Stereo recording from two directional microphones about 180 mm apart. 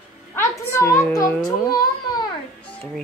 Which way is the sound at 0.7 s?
15° left (ahead or behind).